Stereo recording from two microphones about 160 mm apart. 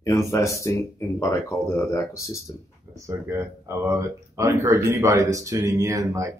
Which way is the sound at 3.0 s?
20° right (ahead or behind).